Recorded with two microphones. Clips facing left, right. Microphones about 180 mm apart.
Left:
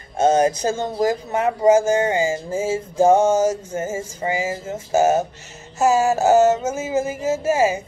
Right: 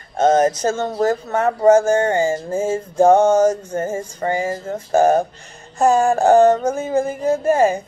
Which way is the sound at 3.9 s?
55° right (ahead or behind).